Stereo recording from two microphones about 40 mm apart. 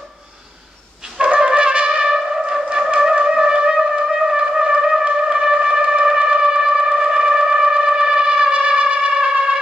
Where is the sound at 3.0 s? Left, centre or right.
Centre.